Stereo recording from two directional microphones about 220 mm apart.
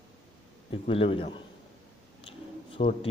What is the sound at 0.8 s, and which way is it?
Speech, 25° left (ahead or behind).